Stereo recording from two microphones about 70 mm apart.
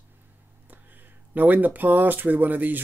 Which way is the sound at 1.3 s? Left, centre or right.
Right.